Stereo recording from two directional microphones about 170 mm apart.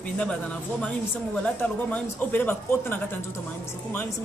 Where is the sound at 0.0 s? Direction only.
5° left (ahead or behind).